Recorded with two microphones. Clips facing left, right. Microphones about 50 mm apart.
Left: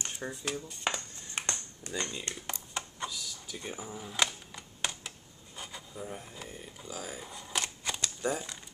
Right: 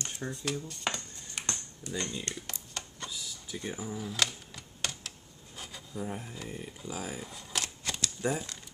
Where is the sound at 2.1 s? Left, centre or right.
Centre.